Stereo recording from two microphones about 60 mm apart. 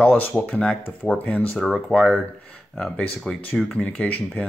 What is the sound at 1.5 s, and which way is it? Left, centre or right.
Speech, centre.